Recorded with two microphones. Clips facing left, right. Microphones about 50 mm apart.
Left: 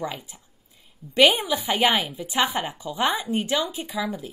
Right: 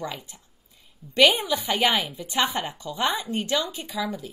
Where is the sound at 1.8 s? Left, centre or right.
Centre.